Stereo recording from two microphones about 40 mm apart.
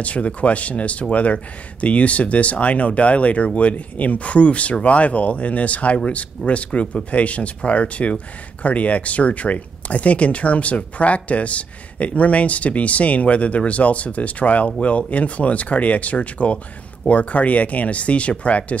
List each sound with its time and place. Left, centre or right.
0.0 s speech: left